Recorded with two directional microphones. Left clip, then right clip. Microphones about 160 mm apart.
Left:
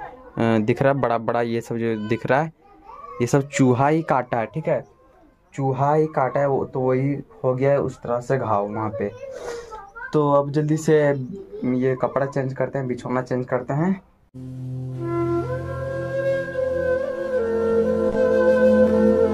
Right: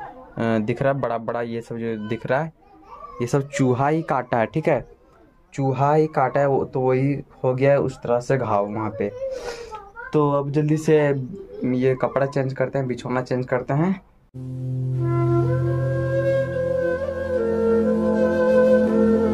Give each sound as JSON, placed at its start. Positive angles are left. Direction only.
{"t": 0.4, "sound": "speech", "side_deg": 30}
{"t": 3.2, "sound": "speech", "side_deg": 25}
{"t": 4.6, "sound": "speech", "side_deg": -90}
{"t": 5.6, "sound": "speech", "side_deg": -15}
{"t": 9.6, "sound": "speech", "side_deg": 5}
{"t": 11.6, "sound": "speech", "side_deg": -10}
{"t": 15.0, "sound": "music", "side_deg": 0}